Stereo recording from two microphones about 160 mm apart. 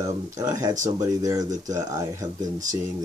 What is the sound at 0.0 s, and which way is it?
Speech, 20° right (ahead or behind).